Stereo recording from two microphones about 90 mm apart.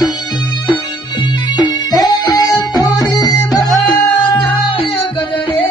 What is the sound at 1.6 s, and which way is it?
Music, 50° left (ahead or behind).